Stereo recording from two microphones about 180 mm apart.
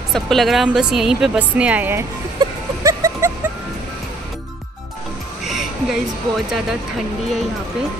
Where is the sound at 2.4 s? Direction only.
20° right (ahead or behind).